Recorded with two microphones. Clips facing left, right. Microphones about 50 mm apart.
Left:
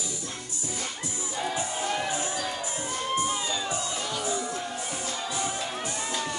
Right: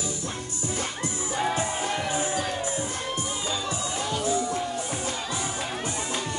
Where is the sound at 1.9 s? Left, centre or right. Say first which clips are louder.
Right 1 dB; centre.